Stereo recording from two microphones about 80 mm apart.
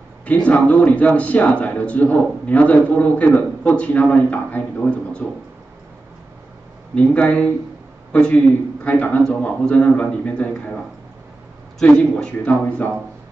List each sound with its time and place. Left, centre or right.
0.2 s a man's voice: centre
7.0 s a man's voice: centre
11.8 s a man's voice: centre